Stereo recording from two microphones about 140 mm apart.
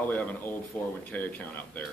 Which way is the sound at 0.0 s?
10° left (ahead or behind).